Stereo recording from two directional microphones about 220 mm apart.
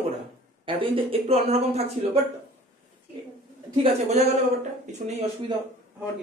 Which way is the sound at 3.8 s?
30° right (ahead or behind).